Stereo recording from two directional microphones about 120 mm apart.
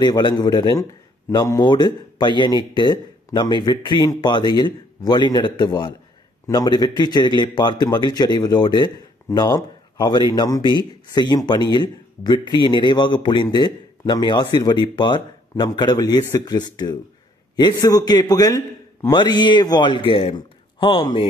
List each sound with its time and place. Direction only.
0.0 s a man's voice: 35° left (ahead or behind)
1.6 s a man's voice: 40° left (ahead or behind)